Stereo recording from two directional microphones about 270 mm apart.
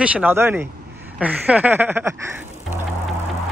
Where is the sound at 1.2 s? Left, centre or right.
Centre.